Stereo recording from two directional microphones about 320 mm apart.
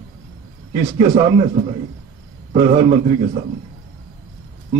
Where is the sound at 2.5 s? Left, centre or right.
Right.